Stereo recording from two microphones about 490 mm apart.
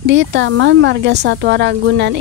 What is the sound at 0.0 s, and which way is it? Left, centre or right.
Speech, right.